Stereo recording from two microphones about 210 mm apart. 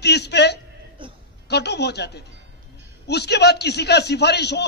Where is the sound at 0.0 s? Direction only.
50° left (ahead or behind).